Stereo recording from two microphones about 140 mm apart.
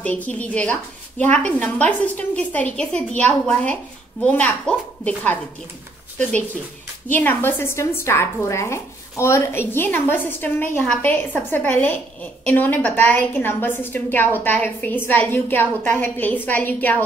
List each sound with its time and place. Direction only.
0.0 s a woman's voice: 10° left (ahead or behind)
7.1 s a woman's voice: 15° left (ahead or behind)